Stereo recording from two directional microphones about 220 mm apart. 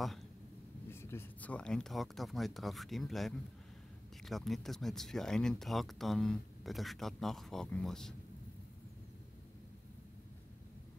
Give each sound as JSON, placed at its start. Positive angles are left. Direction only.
{"t": 0.8, "sound": "speech", "side_deg": 10}